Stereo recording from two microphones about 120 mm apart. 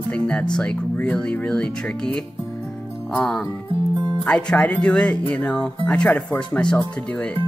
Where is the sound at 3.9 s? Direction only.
40° right (ahead or behind).